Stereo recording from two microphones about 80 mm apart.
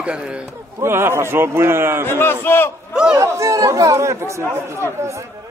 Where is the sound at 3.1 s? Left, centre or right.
Right.